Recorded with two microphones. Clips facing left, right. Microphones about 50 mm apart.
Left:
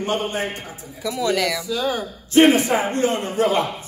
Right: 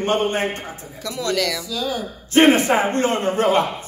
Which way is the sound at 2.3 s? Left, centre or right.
Right.